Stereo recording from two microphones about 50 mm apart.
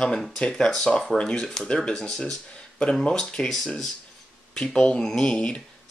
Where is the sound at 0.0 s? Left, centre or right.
Centre.